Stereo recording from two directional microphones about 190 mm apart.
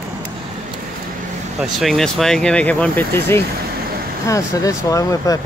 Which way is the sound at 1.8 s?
Centre (ahead or behind).